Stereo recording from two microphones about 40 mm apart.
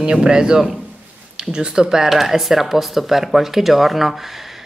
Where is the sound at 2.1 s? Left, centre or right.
Centre.